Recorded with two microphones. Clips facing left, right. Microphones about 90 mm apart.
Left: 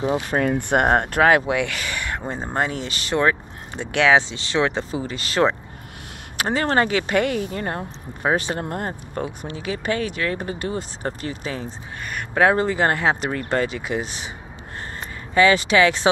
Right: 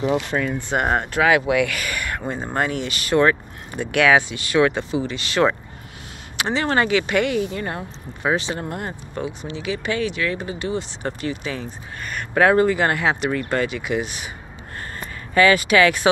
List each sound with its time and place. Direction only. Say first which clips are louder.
0.0 s speech: right 1 dB; 40° left (ahead or behind)
0.4 s speech: left 3 dB; 60° left (ahead or behind)
1.5 s speech: right 3 dB; 25° left (ahead or behind)
3.2 s speech: right 3 dB; 20° left (ahead or behind)
4.9 s speech: right 1 dB; 35° left (ahead or behind)
12.1 s speech: right 1 dB; 15° left (ahead or behind)
15.3 s speech: right 1 dB; 25° left (ahead or behind)